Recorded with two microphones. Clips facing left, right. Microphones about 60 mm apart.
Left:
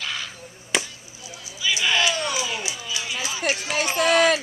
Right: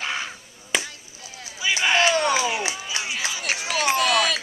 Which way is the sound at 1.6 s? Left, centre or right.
Right.